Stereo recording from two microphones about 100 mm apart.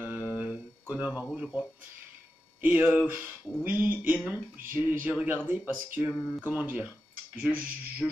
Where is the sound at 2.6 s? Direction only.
20° right (ahead or behind).